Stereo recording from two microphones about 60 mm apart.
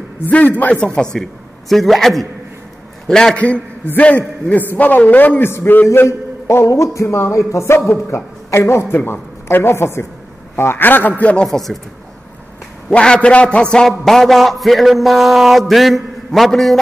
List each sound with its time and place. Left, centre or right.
0.3 s a man's voice: left
1.1 s a man's voice: centre
3.3 s a man's voice: centre; by 5.9 s left
6.7 s music: left
7.9 s a man's voice: left
8.9 s speech: left
11.4 s a man's voice: centre
12.9 s a man's voice: centre
13.8 s a man's voice: centre